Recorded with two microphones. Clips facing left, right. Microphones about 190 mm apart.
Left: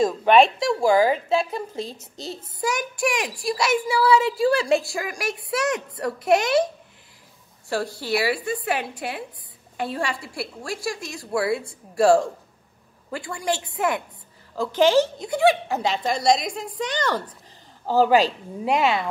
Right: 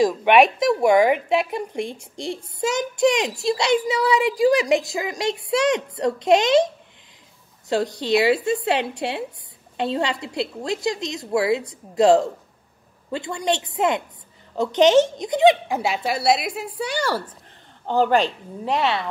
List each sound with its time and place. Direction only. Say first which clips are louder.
0.6 s a child's voice: right 2 dB; 20° right (ahead or behind)
7.7 s a child's voice: right 5 dB; 20° right (ahead or behind)
15.8 s a woman's voice: even; 10° right (ahead or behind)
17.8 s a woman's voice: left 1 dB; 5° left (ahead or behind)